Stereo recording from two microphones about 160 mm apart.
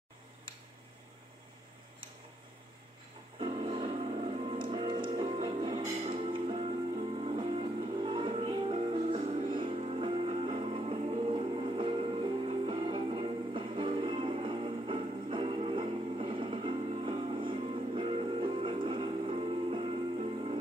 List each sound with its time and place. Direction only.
3.3 s music: 35° right (ahead or behind)